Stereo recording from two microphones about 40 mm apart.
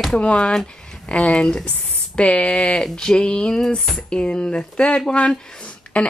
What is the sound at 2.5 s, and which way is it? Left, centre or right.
Speech, centre.